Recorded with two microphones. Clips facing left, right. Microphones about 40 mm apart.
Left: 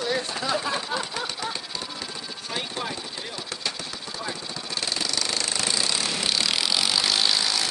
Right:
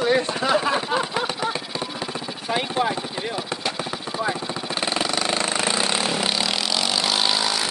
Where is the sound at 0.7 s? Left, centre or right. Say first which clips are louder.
Right 6 dB; right.